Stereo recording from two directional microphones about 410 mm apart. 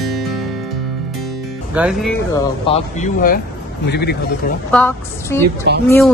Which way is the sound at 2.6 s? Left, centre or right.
Centre.